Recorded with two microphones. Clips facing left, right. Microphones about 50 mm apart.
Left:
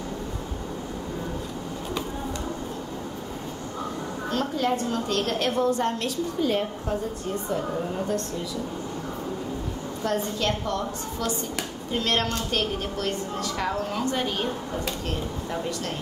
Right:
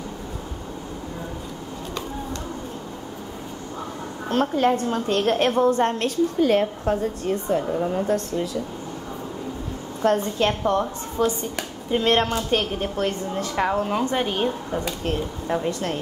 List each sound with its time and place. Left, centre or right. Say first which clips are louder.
4.3 s a woman's voice: right 6 dB; right
10.0 s a woman's voice: right 6 dB; right